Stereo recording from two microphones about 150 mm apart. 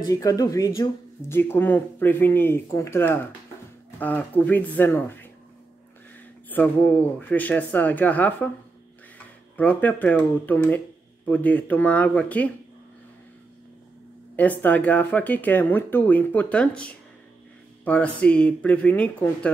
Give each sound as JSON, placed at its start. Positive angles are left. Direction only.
{"t": 0.0, "sound": "speech", "side_deg": 25}
{"t": 6.5, "sound": "speech", "side_deg": 10}
{"t": 9.6, "sound": "speech", "side_deg": 10}
{"t": 14.6, "sound": "speech", "side_deg": 10}